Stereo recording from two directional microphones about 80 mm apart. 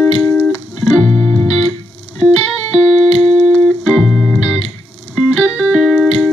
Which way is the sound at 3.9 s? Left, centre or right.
Centre.